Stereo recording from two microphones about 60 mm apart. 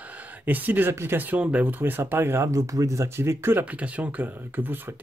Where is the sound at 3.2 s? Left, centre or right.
Right.